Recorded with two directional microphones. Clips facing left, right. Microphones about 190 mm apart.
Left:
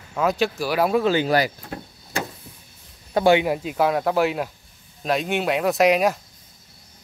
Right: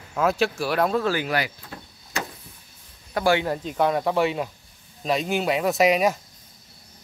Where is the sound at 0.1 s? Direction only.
Centre (ahead or behind).